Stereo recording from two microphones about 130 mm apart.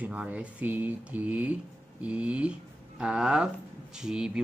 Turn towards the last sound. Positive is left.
turn(degrees=-5)  # may be behind; listen again after turning